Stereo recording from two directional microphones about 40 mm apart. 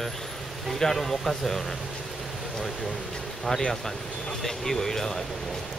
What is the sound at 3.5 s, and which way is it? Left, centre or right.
Speech, centre.